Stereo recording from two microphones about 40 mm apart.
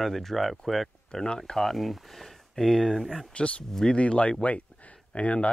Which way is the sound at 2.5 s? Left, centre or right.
Centre.